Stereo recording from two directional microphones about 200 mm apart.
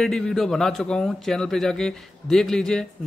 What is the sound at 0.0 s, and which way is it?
A man's voice, centre (ahead or behind).